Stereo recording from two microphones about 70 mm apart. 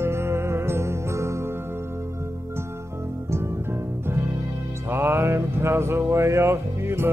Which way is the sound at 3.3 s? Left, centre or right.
Right.